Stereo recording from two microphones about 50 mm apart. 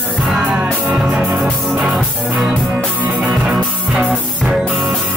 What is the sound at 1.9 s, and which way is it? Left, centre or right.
Music, centre.